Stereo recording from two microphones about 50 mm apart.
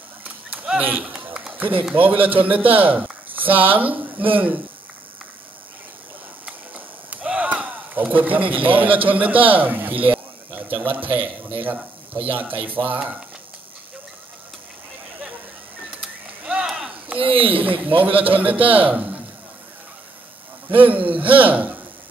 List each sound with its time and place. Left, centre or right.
0.2 s a sound: right
0.7 s a man's voice: right
1.0 s run: centre
2.0 s a man's voice: right
6.4 s a sound: right
7.3 s a man's voice: right
16.6 s a sound: centre
17.1 s a man's voice: right
20.7 s a man's voice: right